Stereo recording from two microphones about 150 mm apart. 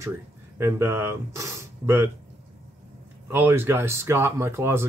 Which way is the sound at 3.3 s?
15° right (ahead or behind).